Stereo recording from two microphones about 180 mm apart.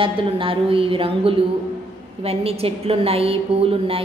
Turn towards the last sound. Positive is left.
turn(degrees=-30)  # may be behind; listen again after turning